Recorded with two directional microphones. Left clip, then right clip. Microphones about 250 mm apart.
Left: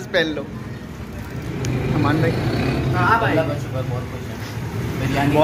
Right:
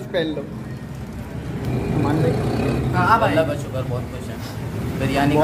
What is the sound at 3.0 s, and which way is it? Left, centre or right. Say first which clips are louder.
Speech: right 1 dB; right.